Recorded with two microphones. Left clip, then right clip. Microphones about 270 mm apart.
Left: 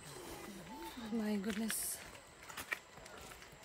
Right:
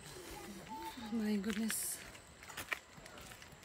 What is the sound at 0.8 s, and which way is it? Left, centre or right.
Speech, centre.